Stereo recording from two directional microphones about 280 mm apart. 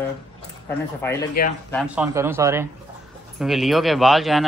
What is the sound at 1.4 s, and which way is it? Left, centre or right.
Speech, left.